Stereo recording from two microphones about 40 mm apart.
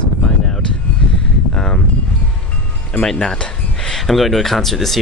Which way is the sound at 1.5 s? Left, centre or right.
Left.